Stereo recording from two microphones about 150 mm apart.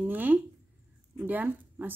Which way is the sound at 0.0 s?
10° right (ahead or behind).